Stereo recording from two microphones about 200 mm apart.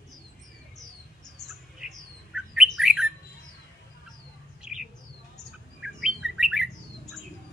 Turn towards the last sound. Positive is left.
turn(degrees=-5)  # may be behind; listen again after turning